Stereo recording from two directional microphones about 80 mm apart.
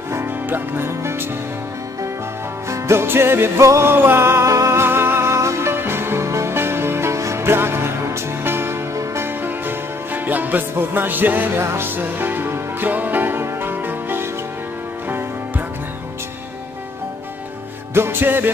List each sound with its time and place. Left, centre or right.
0.1 s music: right
2.7 s music: right
17.9 s music: right